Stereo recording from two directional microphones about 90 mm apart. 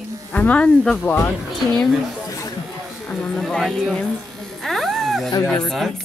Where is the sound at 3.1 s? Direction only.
5° left (ahead or behind).